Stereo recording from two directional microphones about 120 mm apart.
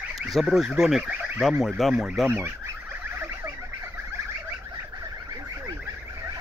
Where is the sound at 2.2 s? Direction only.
15° right (ahead or behind).